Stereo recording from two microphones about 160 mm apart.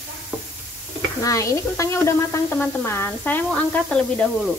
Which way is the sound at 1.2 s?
20° left (ahead or behind).